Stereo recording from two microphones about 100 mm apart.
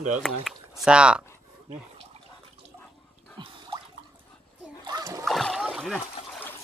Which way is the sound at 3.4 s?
50° right (ahead or behind).